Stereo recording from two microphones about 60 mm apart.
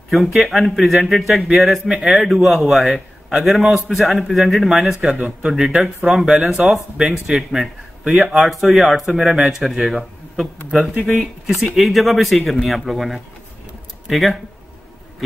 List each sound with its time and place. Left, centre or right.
0.1 s a man's voice: centre